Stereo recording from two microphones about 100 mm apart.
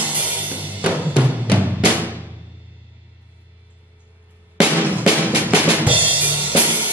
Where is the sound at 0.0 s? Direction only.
15° right (ahead or behind).